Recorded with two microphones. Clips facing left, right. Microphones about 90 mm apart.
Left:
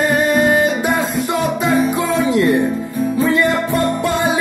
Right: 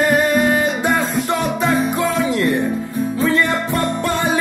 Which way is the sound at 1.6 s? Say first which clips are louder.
Left 1 dB; 20° left (ahead or behind).